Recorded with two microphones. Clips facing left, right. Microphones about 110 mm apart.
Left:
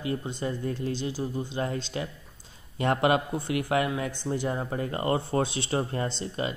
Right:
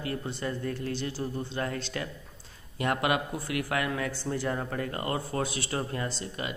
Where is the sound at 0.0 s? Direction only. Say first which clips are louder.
Left 2 dB; 20° left (ahead or behind).